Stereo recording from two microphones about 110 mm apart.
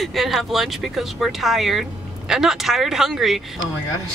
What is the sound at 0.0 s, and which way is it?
Speech, centre (ahead or behind).